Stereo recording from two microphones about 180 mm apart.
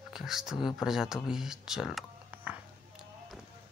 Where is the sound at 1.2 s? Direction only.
5° right (ahead or behind).